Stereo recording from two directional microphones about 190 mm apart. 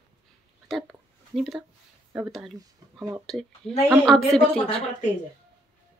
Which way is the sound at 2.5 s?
15° right (ahead or behind).